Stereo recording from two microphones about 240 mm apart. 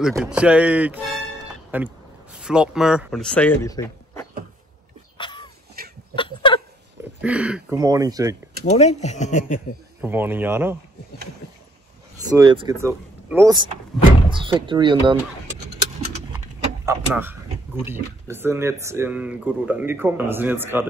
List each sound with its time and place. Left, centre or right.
0.1 s speech: centre
3.7 s a sound: centre
7.2 s speech: centre
7.8 s speech: centre
8.6 s speech: left
10.0 s speech: centre
12.3 s speech: centre
16.8 s speech: centre